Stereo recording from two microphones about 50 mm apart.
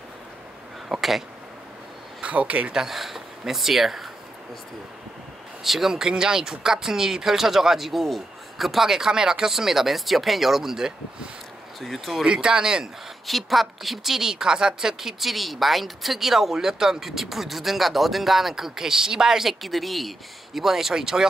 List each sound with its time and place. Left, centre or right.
0.9 s a sound: centre
2.2 s speech: right
2.8 s speech: centre
5.6 s a woman's voice: centre
12.3 s speech: centre
13.3 s a woman's voice: centre